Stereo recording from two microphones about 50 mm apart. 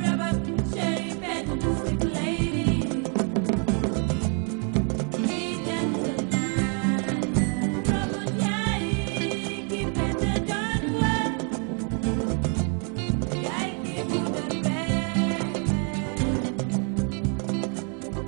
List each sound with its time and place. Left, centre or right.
0.0 s music: centre
1.7 s music: centre
5.8 s music: centre
9.9 s music: centre
14.1 s music: centre